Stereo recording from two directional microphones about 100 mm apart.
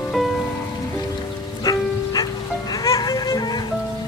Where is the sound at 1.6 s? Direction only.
40° left (ahead or behind).